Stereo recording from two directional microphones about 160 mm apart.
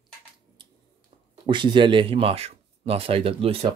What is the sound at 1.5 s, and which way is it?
Speech, 30° right (ahead or behind).